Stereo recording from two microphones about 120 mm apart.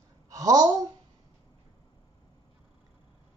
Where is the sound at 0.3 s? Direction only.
30° right (ahead or behind).